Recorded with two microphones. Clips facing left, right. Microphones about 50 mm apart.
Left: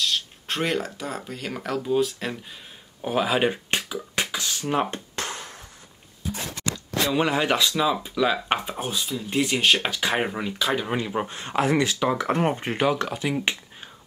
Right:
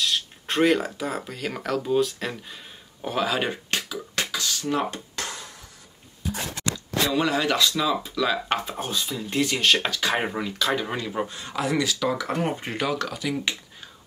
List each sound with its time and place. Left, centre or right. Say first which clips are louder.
0.0 s speech: even; centre
3.2 s a sound: left 3 dB; centre
7.1 s speech: left 1 dB; left
10.1 s speech: left 1 dB; centre
11.2 s speech: left 4 dB; left